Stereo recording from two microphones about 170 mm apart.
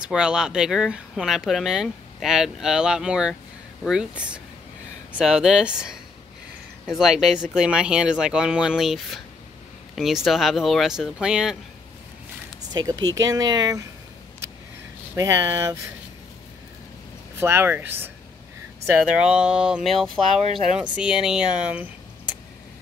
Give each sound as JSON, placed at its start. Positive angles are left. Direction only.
{"t": 0.0, "sound": "speech", "side_deg": -5}
{"t": 13.1, "sound": "speech", "side_deg": -20}
{"t": 15.1, "sound": "speech", "side_deg": -20}
{"t": 17.4, "sound": "speech", "side_deg": -15}